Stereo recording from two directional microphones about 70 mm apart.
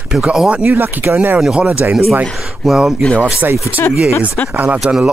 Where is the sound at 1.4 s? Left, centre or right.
Centre.